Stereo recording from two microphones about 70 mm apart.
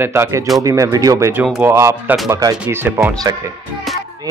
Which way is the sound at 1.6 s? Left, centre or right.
Right.